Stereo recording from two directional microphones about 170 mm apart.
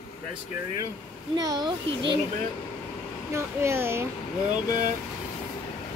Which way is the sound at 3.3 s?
15° right (ahead or behind).